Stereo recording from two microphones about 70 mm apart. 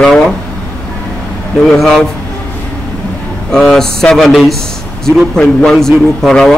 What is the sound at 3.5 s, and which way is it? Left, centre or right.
Speech, centre.